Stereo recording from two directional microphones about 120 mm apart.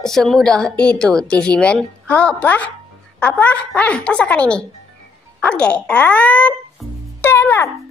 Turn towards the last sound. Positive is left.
turn(degrees=20)  # may be behind; listen again after turning